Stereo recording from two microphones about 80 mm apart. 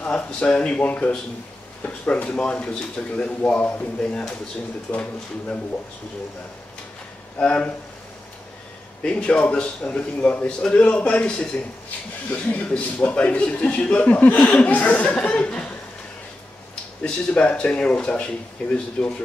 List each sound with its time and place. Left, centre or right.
0.0 s a man's voice: centre
7.3 s a man's voice: centre
9.0 s a man's voice: centre
17.0 s a man's voice: centre